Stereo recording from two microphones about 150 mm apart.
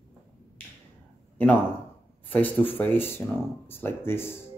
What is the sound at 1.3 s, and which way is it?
Speech, 10° left (ahead or behind).